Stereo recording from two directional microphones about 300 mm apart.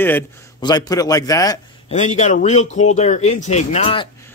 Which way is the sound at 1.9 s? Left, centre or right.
Left.